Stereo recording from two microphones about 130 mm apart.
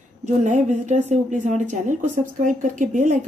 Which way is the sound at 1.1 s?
65° right (ahead or behind).